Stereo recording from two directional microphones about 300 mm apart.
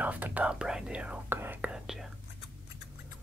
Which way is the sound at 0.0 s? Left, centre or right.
Centre.